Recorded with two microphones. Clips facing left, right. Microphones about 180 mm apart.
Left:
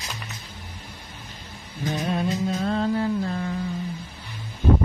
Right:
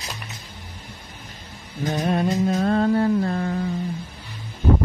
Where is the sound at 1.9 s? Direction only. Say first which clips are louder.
Right 3 dB; 50° right (ahead or behind).